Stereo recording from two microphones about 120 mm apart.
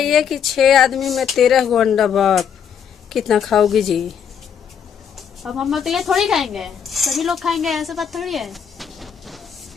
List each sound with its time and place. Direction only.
0.0 s speech: centre (ahead or behind)
5.1 s speech: centre (ahead or behind)